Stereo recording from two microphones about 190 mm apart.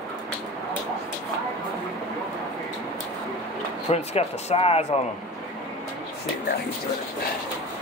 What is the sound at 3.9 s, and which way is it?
Speech, 35° left (ahead or behind).